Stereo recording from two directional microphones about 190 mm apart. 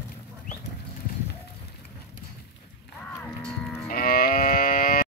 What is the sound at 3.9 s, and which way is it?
Livestock, 50° left (ahead or behind).